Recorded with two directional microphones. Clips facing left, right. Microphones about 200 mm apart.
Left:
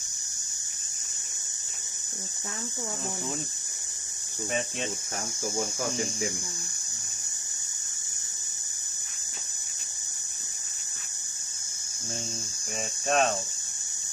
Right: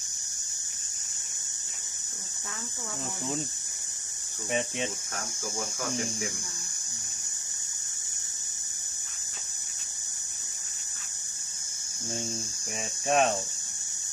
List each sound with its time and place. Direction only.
4.5 s speech: 15° right (ahead or behind)
13.0 s speech: 15° right (ahead or behind)